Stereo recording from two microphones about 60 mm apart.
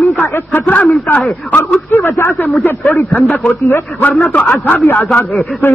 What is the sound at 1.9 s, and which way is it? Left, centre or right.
Speech, left.